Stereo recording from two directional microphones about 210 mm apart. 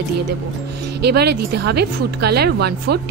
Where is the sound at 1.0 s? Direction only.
50° right (ahead or behind).